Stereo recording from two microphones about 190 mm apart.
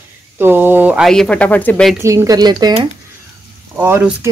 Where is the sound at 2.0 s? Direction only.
15° right (ahead or behind).